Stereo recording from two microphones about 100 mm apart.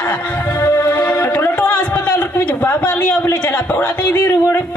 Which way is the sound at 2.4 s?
15° left (ahead or behind).